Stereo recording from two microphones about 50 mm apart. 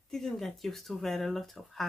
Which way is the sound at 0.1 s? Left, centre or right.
Centre.